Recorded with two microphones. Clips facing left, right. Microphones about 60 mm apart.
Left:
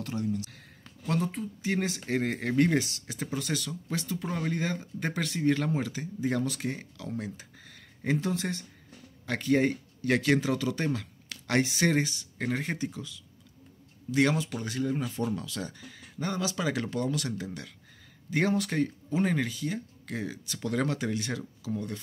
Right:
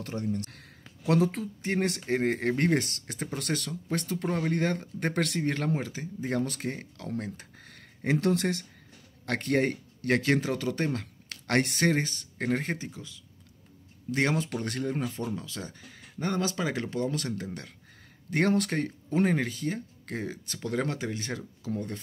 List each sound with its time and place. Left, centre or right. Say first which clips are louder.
0.0 s speech: left 1 dB; right
0.3 s speech: even; right
1.0 s speech: right 5 dB; right
1.8 s speech: right 3 dB; right
2.0 s speech: right 3 dB; right
5.4 s speech: left 2 dB; right
7.3 s a man's voice: right 1 dB; right
10.2 s speech: left 1 dB; right
14.6 s speech: even; right
16.3 s speech: right 1 dB; right
17.1 s speech: even; right
18.3 s speech: right 2 dB; right
19.2 s speech: right 1 dB; right